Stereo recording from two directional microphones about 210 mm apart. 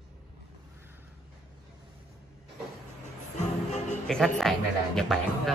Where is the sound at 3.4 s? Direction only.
35° left (ahead or behind).